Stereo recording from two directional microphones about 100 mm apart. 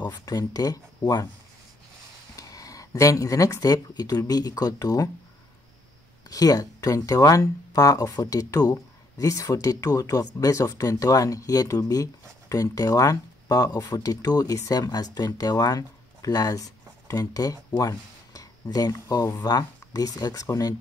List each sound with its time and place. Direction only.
0.0 s speech: 40° left (ahead or behind)
2.3 s speech: 35° left (ahead or behind)
6.3 s speech: 40° left (ahead or behind)